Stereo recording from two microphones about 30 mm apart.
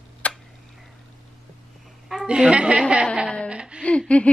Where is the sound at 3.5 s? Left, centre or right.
Right.